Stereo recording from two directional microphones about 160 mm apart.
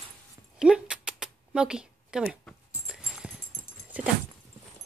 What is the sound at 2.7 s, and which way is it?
Horse, 5° right (ahead or behind).